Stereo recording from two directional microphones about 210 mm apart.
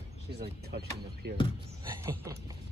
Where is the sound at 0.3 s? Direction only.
50° right (ahead or behind).